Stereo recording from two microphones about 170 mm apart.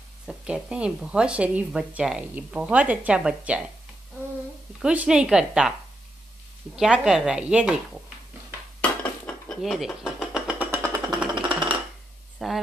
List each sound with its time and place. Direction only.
0.3 s speech: 5° right (ahead or behind)
4.8 s a woman's voice: 5° right (ahead or behind)
9.2 s a sound: centre (ahead or behind)
11.1 s music: 5° right (ahead or behind)
11.4 s music: 30° right (ahead or behind)
12.4 s speech: centre (ahead or behind)